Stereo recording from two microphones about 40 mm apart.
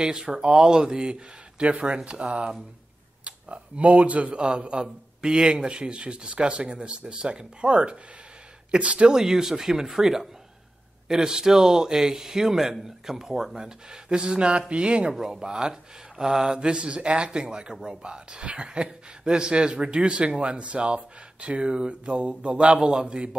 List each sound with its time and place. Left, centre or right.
0.0 s speech: centre
9.1 s a man's voice: centre